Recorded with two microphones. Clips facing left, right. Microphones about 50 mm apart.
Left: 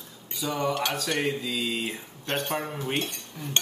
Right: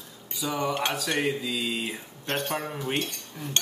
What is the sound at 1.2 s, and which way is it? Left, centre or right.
Speech, centre.